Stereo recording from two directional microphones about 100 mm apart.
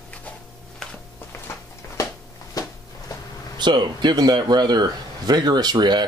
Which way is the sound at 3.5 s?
50° right (ahead or behind).